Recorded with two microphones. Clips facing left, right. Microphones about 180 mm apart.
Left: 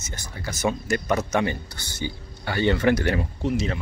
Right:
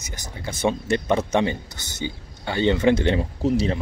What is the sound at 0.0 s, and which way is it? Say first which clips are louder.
Speech: right 1 dB; 15° right (ahead or behind).